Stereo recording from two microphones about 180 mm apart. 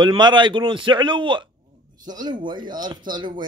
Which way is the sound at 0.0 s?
25° right (ahead or behind).